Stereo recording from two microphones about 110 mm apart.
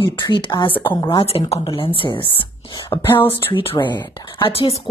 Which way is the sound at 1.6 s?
50° left (ahead or behind).